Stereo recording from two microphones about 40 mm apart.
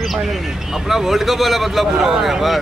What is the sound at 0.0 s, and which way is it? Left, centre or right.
Speech, centre.